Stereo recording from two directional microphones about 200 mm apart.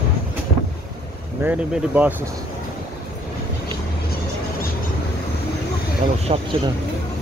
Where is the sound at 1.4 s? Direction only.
10° right (ahead or behind).